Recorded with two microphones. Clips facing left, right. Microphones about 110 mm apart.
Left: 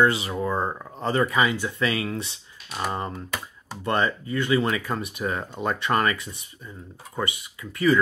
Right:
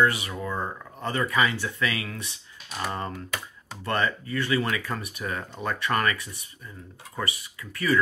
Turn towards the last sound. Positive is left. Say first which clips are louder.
# left 4 dB
turn(degrees=25)  # may be behind; listen again after turning